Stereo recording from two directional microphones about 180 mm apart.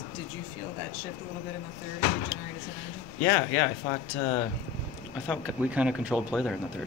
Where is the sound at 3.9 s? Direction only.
25° left (ahead or behind).